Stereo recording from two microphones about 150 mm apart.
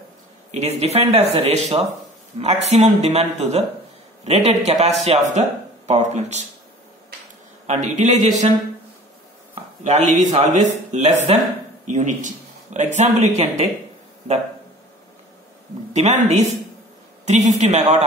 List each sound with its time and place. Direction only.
0.5 s a man's voice: 45° right (ahead or behind)
7.6 s a man's voice: 55° right (ahead or behind)
9.8 s a man's voice: 50° right (ahead or behind)
15.9 s a man's voice: 50° right (ahead or behind)